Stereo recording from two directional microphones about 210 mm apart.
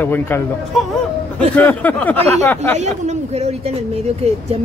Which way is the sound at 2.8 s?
35° right (ahead or behind).